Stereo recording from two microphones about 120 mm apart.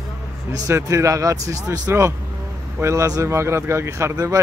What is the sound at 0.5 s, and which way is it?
Speech, 30° right (ahead or behind).